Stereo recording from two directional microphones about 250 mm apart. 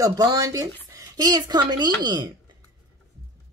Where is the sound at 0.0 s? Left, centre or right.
Centre.